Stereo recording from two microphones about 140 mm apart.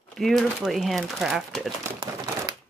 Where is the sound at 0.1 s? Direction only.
Centre (ahead or behind).